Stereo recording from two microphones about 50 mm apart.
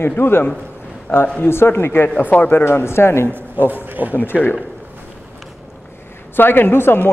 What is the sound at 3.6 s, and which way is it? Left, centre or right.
Speech, right.